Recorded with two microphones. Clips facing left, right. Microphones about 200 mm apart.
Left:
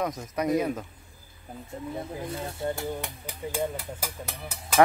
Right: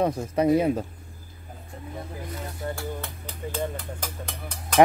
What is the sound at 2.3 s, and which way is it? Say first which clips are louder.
Speech: left 2 dB; 25° left (ahead or behind).